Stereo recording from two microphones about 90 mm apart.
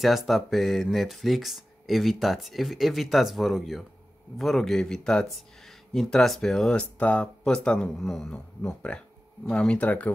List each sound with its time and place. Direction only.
0.0 s speech: centre (ahead or behind); by 10.1 s 15° left (ahead or behind)